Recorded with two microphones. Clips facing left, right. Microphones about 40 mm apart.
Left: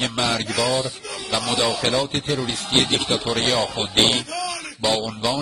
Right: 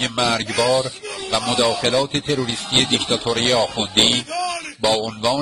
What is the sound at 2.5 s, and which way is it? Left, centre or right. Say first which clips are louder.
Speech: right 1 dB; centre.